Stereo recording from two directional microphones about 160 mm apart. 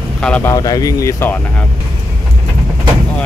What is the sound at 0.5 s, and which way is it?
Speech, 25° left (ahead or behind).